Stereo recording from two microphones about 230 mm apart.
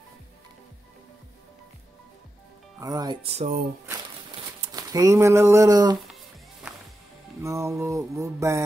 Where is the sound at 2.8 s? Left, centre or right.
Centre.